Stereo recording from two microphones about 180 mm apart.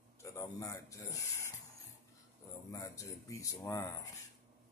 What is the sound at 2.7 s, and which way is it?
Speech, 15° left (ahead or behind).